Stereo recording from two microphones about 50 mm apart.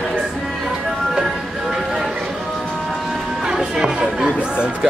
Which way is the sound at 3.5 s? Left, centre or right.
Centre.